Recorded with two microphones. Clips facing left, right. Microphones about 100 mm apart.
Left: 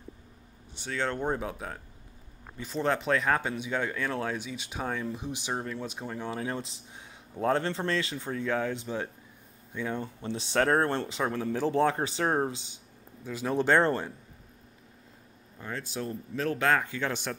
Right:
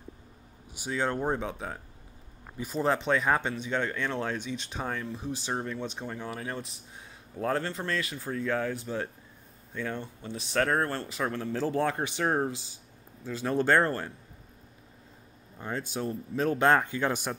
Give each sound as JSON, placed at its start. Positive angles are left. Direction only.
{"t": 0.7, "sound": "speech", "side_deg": -10}
{"t": 5.5, "sound": "speech", "side_deg": 0}
{"t": 6.2, "sound": "speech", "side_deg": 25}
{"t": 10.2, "sound": "speech", "side_deg": 30}
{"t": 15.5, "sound": "speech", "side_deg": -20}